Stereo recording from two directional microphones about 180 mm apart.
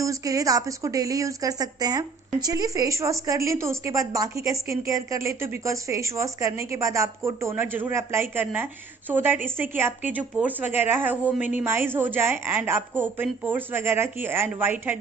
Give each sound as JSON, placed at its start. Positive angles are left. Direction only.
{"t": 0.0, "sound": "speech", "side_deg": -20}